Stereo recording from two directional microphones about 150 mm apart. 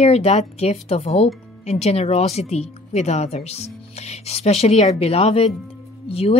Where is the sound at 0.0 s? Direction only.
45° left (ahead or behind).